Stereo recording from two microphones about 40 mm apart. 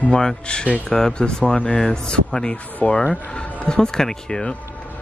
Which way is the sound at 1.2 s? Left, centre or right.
Left.